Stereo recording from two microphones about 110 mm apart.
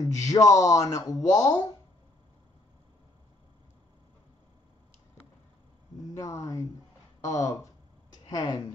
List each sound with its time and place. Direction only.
0.1 s speech: 30° left (ahead or behind)
6.1 s speech: 30° left (ahead or behind)